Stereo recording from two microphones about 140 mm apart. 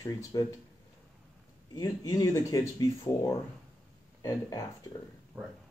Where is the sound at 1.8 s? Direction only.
25° left (ahead or behind).